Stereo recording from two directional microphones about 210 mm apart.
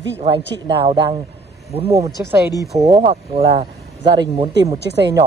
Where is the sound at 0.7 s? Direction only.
25° right (ahead or behind).